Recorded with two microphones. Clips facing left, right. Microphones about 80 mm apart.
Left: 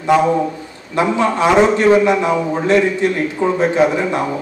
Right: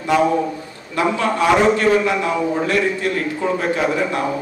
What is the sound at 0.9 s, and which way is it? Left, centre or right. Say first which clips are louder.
A man's voice: left 3 dB; left.